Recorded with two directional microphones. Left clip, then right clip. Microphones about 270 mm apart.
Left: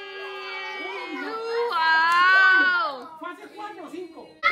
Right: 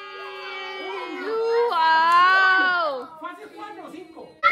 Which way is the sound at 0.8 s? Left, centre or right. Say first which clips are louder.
Right 2 dB; centre.